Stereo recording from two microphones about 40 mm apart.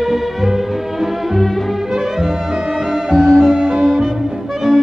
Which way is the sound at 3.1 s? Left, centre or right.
Centre.